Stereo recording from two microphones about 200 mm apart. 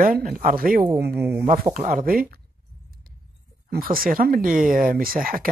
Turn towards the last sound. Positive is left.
turn(degrees=-45)  # may be behind; listen again after turning